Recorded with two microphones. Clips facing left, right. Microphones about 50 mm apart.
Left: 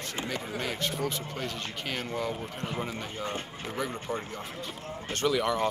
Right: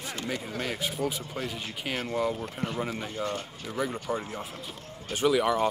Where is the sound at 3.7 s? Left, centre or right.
Centre.